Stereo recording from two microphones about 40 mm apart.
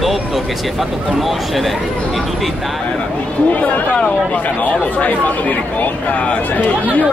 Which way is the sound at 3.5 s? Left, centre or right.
Left.